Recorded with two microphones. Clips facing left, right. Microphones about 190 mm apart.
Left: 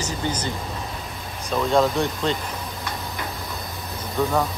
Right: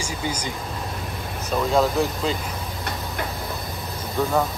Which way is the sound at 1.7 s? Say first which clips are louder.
Left 1 dB; 5° right (ahead or behind).